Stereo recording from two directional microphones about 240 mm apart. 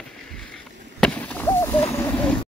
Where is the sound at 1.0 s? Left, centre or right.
Centre.